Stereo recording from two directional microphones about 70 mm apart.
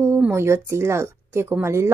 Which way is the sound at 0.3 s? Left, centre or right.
Right.